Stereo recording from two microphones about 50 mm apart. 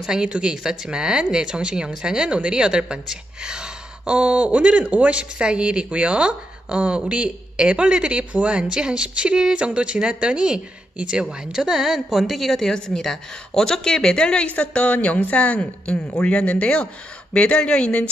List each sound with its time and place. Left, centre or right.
0.0 s a woman's voice: centre